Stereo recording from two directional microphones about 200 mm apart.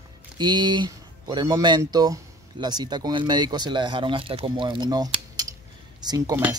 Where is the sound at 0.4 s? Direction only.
20° right (ahead or behind).